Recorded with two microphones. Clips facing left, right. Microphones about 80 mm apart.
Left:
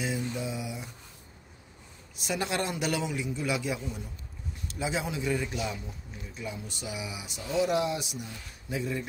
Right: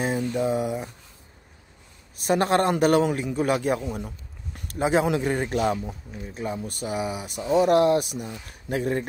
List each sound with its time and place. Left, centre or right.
0.0 s mantra: right
2.1 s speech: right